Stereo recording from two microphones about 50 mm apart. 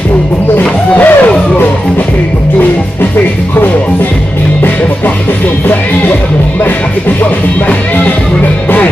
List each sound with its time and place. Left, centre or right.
0.6 s speech: left